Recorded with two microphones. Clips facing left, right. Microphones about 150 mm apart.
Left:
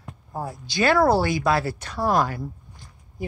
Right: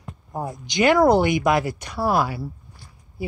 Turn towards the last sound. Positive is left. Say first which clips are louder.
# right 2 dB
turn(degrees=-10)  # may be behind; listen again after turning